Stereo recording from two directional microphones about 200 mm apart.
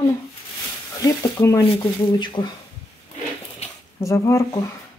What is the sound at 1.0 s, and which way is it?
Speech, 15° left (ahead or behind).